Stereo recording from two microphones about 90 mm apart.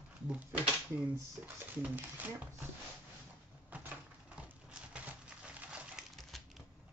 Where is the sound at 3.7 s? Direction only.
20° right (ahead or behind).